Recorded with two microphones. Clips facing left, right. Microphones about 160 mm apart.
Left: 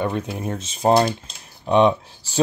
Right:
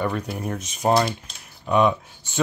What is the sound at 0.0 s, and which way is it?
Speech, 25° left (ahead or behind).